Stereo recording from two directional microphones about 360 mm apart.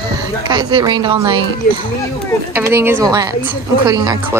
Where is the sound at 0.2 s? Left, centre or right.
Centre.